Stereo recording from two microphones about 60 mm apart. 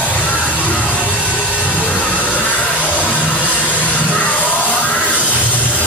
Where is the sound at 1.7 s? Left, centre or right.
Left.